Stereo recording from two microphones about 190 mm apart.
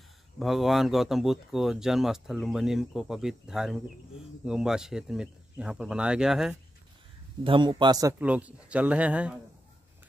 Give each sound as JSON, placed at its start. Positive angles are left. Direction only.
{"t": 0.4, "sound": "speech", "side_deg": 0}
{"t": 7.4, "sound": "speech", "side_deg": -25}